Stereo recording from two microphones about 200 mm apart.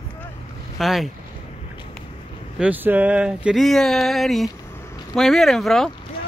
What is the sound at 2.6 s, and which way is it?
Speech, 10° right (ahead or behind).